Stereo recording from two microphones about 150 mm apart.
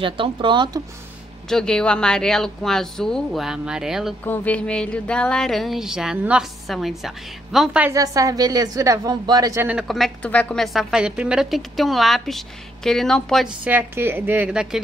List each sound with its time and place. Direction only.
0.0 s speech: 35° right (ahead or behind)
1.5 s a woman's voice: 5° left (ahead or behind)
4.2 s a woman's voice: 10° left (ahead or behind); by 7.9 s 5° right (ahead or behind)
7.9 s a woman's voice: 20° right (ahead or behind)
9.7 s a woman's voice: centre (ahead or behind)
13.7 s a woman's voice: 15° right (ahead or behind)